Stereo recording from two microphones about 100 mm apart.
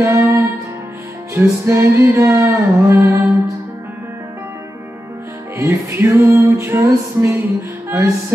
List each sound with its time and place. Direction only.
0.0 s music: 30° right (ahead or behind)
5.6 s music: 25° right (ahead or behind)